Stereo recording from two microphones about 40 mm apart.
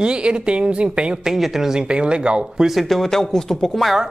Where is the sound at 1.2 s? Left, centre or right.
Centre.